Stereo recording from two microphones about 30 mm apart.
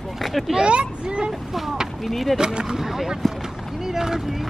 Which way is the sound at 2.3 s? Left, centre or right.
Right.